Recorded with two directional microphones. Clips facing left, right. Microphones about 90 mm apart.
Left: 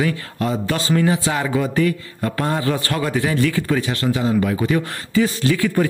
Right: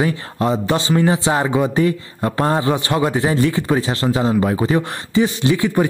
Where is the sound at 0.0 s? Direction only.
25° right (ahead or behind).